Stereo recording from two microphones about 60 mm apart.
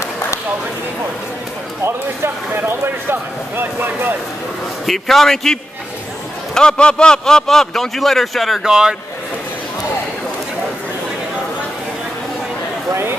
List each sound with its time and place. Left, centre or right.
1.9 s speech: right
4.8 s a man's voice: centre
8.6 s speech: centre